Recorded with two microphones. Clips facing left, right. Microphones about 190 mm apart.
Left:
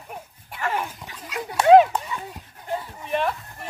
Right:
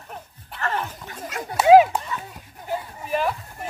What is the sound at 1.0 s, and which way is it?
Dog, 50° right (ahead or behind).